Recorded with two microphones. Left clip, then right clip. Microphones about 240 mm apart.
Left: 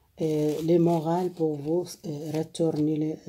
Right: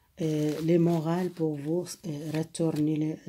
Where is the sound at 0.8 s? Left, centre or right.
Right.